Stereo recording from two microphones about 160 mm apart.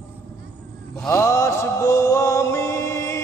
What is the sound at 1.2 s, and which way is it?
Chant, 20° left (ahead or behind).